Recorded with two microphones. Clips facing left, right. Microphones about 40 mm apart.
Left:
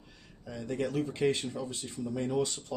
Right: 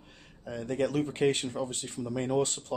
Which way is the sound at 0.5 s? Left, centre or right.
Right.